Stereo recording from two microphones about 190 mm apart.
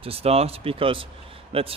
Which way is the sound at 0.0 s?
30° right (ahead or behind).